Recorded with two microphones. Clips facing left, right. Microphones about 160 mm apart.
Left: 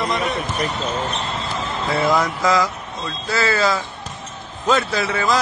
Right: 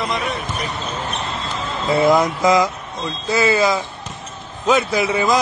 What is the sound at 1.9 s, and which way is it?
A man's voice, 20° right (ahead or behind).